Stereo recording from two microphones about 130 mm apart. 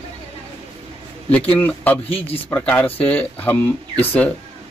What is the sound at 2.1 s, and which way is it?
Speech, 50° left (ahead or behind).